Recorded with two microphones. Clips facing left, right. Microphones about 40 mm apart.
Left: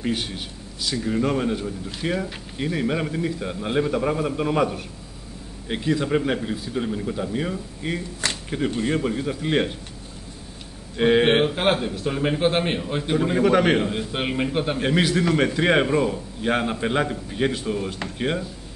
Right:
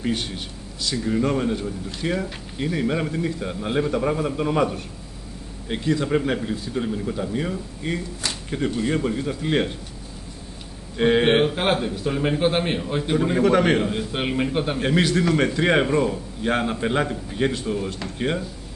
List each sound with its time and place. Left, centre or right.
0.0 s a man's voice: centre
8.6 s speech: centre
8.9 s a man's voice: centre
11.0 s a man's voice: centre